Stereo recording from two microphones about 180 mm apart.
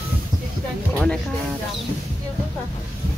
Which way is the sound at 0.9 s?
5° left (ahead or behind).